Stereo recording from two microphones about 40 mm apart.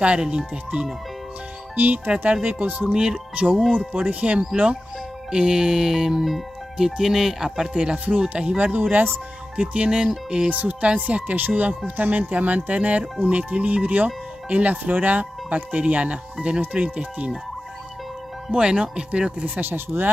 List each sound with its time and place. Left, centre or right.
0.0 s speech: right
1.8 s speech: right
2.9 s speech: right
3.9 s speech: right
5.3 s music: right
7.7 s speech: right
8.5 s speech: right
8.9 s speech: right
9.6 s speech: right
10.5 s speech: right
18.5 s speech: right
19.4 s speech: right